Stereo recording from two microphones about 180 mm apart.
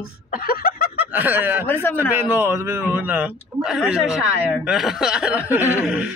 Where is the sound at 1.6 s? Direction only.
10° left (ahead or behind).